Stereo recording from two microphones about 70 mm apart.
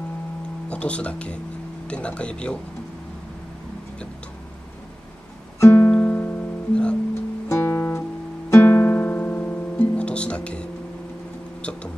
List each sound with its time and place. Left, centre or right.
0.7 s speech: centre
5.6 s music: left
5.9 s music: left
7.4 s guitar: left
8.5 s music: left; by 10.7 s centre